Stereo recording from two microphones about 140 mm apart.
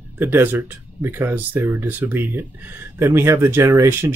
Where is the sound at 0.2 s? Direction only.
15° right (ahead or behind).